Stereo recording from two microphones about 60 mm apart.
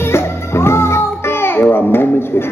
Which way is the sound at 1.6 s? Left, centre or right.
Left.